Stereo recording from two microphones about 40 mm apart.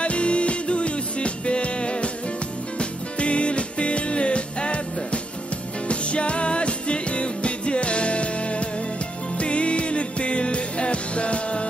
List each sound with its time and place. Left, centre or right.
0.0 s music: left